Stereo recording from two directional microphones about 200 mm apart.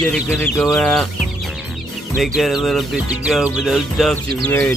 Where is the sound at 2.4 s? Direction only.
Centre (ahead or behind).